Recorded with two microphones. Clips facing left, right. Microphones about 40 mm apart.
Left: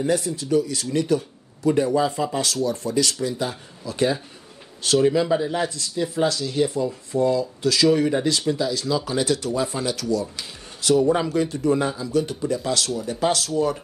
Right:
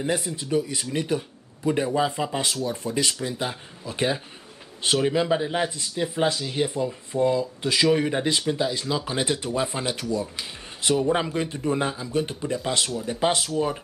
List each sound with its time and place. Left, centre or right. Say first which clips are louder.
0.0 s speech: left 4 dB; right